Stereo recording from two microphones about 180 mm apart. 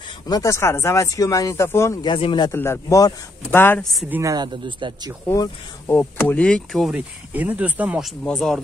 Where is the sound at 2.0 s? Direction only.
30° left (ahead or behind).